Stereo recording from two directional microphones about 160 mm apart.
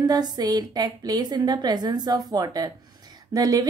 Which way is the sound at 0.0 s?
25° right (ahead or behind).